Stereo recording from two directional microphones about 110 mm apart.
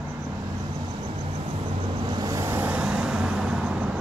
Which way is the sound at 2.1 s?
35° right (ahead or behind).